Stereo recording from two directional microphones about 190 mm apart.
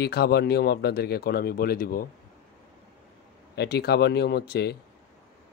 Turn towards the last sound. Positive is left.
turn(degrees=60)  # may be behind; listen again after turning